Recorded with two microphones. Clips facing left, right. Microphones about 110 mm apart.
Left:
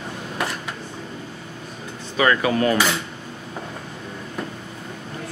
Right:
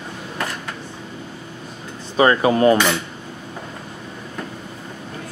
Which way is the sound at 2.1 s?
30° right (ahead or behind).